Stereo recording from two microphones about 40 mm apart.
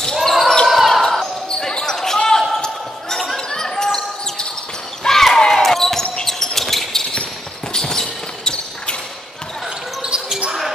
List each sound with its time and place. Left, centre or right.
0.1 s basketball bounce: centre
0.7 s basketball bounce: centre
1.7 s basketball bounce: centre
5.0 s basketball bounce: centre